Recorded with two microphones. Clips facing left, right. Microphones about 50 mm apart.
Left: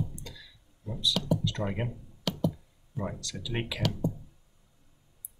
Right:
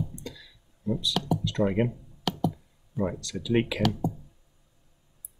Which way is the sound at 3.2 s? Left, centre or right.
Right.